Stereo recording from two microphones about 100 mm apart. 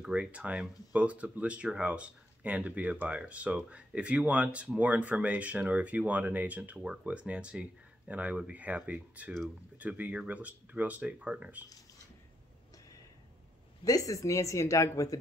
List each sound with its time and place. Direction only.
0.0 s speech: 15° right (ahead or behind)
13.8 s speech: 35° left (ahead or behind)